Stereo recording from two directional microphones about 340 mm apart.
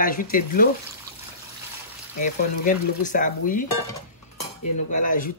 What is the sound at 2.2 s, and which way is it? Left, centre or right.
Speech, left.